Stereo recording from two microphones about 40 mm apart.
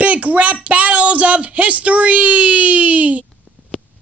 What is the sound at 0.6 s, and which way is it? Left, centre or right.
Speech, right.